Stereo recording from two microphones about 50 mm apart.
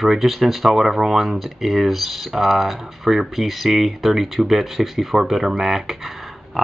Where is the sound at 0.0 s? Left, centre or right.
Centre.